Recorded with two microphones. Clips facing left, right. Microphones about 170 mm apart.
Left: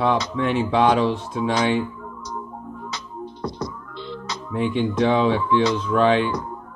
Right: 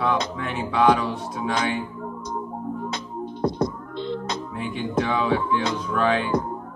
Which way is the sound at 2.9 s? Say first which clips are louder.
Right 3 dB; 55° right (ahead or behind).